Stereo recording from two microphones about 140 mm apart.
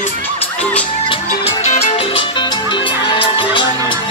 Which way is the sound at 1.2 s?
60° left (ahead or behind).